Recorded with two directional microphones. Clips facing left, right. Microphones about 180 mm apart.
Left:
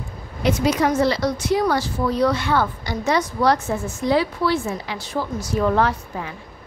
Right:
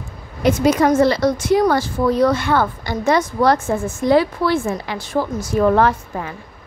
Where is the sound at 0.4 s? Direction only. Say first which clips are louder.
Right 4 dB; 50° right (ahead or behind).